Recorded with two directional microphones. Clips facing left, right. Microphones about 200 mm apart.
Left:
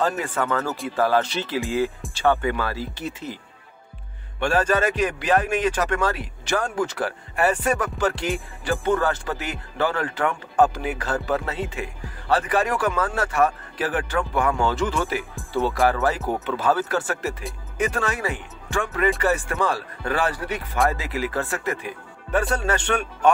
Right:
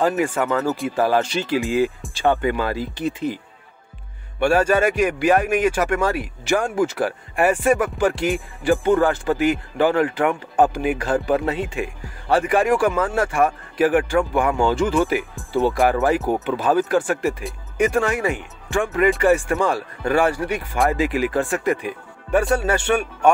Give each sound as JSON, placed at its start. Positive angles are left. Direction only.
{"t": 0.3, "sound": "speech", "side_deg": -20}
{"t": 4.4, "sound": "speech", "side_deg": -10}